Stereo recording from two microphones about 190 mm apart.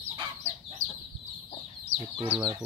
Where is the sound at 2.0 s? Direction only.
25° right (ahead or behind).